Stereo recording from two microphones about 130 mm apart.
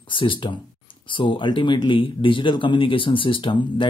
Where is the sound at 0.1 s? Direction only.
40° left (ahead or behind).